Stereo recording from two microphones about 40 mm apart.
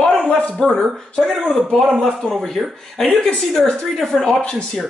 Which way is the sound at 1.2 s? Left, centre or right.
Centre.